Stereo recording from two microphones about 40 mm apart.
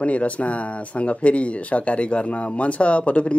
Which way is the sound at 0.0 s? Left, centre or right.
Left.